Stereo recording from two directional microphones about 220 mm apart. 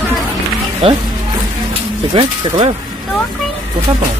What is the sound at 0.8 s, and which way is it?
Speech, 25° right (ahead or behind).